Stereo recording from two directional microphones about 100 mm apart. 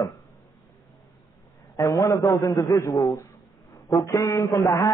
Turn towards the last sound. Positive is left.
turn(degrees=35)  # may be behind; listen again after turning